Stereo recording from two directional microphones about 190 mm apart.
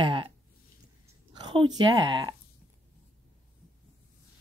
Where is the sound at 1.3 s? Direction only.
20° right (ahead or behind).